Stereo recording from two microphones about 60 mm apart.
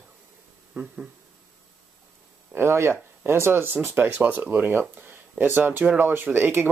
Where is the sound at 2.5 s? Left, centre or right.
Right.